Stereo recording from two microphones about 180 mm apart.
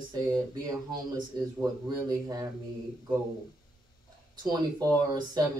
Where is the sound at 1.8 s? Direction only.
20° right (ahead or behind).